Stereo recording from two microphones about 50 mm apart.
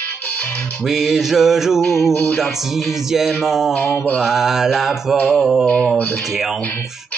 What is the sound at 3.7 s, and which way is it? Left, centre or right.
Mantra, left.